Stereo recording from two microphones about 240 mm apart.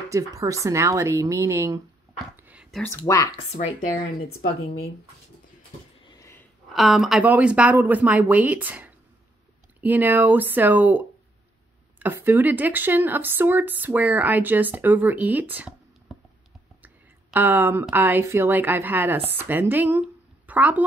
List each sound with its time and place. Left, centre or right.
0.1 s speech: centre
2.3 s whispering: centre
3.0 s speech: centre
3.6 s speech: left
6.0 s a sound: centre
6.7 s speech: centre
16.8 s speech: centre